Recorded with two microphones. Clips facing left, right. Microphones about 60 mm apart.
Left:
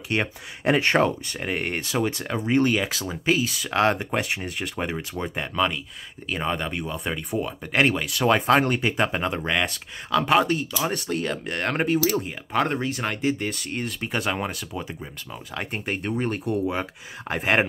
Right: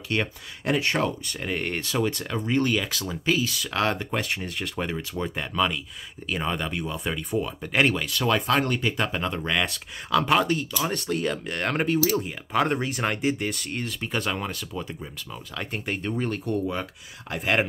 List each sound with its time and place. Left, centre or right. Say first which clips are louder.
0.1 s speech: left 1 dB; left
0.7 s speech: left 5 dB; left
1.0 s speech: left 3 dB; left
8.3 s speech: left 4 dB; left
9.6 s speech: left 1 dB; centre
17.4 s speech: left 2 dB; left